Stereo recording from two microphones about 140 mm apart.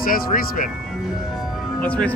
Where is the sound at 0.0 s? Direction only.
90° left.